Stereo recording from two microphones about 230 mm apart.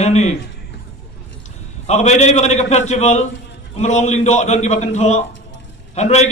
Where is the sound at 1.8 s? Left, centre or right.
Left.